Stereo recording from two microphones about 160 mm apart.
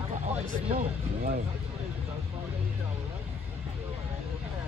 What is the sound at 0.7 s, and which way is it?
Speech, 65° right (ahead or behind).